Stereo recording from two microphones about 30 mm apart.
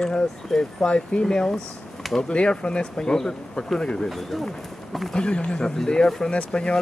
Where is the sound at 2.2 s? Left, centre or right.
Left.